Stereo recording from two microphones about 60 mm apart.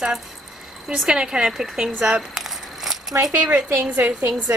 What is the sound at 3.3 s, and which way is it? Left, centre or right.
Speech, right.